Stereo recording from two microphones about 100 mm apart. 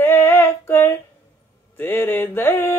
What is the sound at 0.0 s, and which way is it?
Female singing, 20° left (ahead or behind).